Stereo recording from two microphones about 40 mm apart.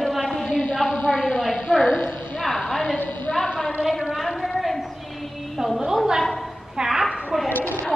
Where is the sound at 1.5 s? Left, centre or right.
Centre.